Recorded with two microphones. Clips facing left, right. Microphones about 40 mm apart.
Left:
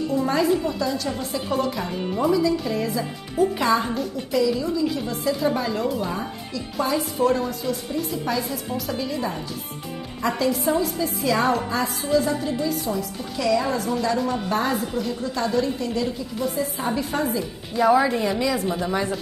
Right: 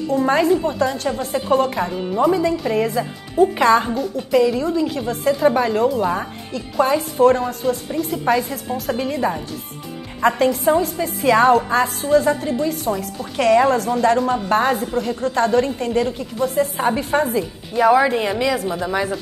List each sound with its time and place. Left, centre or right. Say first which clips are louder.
0.1 s a woman's voice: right 6 dB; right
3.6 s speech: right 8 dB; right
4.3 s a woman's voice: right 5 dB; right
17.7 s a woman's voice: right 4 dB; right